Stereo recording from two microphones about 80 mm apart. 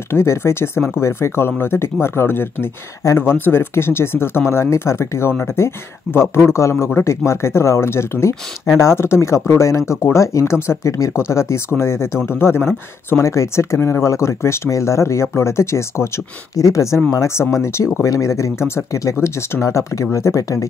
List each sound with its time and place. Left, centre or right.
0.1 s speech: left